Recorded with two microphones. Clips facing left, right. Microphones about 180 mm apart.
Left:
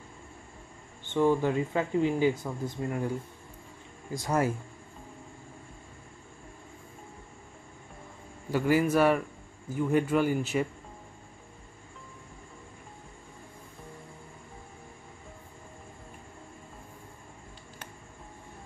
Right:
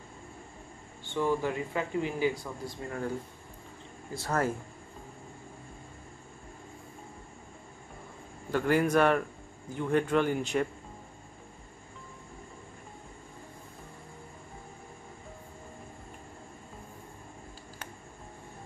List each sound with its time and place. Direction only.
1.0 s speech: 20° left (ahead or behind)
4.1 s speech: 15° left (ahead or behind)
8.5 s a man's voice: 10° left (ahead or behind)